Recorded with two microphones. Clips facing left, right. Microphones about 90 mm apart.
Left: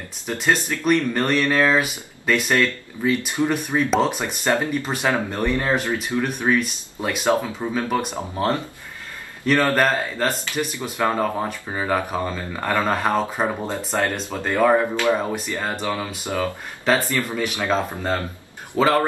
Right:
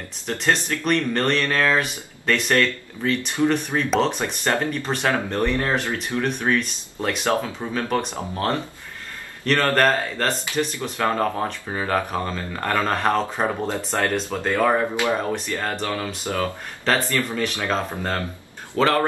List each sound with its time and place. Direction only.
0.3 s speech: 10° left (ahead or behind)